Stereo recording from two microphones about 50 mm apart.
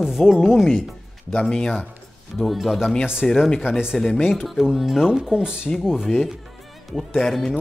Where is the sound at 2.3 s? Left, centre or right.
Centre.